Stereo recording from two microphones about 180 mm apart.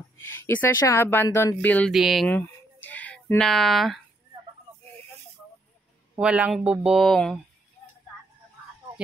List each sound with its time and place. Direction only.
0.2 s speech: 10° left (ahead or behind)
6.1 s speech: 5° right (ahead or behind)